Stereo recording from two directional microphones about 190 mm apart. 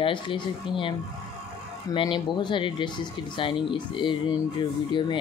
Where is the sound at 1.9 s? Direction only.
25° left (ahead or behind).